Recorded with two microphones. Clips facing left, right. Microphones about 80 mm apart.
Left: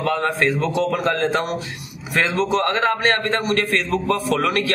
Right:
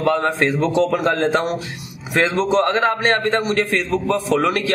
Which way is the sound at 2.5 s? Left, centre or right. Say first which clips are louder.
Right 3 dB; centre.